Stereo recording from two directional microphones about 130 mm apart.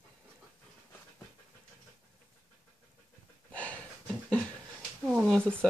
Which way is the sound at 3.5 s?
10° left (ahead or behind).